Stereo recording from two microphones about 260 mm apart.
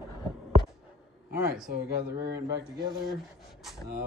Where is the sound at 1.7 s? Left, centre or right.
Right.